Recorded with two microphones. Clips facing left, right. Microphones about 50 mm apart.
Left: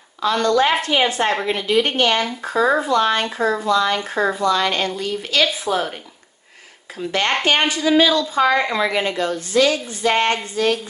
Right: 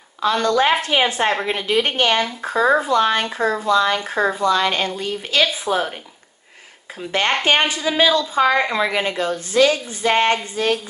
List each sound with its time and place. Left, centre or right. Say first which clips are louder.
0.2 s a woman's voice: even; right
2.4 s speech: right 1 dB; centre
2.9 s a woman's voice: even; right
3.3 s speech: even; centre
3.6 s a woman's voice: right 2 dB; right
4.1 s a woman's voice: even; centre
7.0 s a woman's voice: even; right